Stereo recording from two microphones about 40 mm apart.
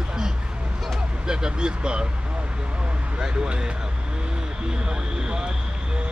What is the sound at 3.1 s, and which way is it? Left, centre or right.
Speech, right.